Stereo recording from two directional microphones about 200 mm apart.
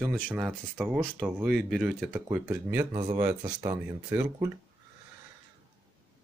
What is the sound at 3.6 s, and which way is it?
Speech, 20° right (ahead or behind).